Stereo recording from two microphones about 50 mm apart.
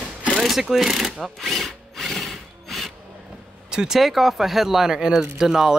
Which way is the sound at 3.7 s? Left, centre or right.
Centre.